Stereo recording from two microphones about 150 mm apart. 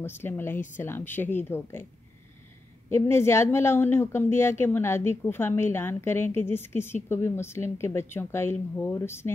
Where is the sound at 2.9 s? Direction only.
15° left (ahead or behind).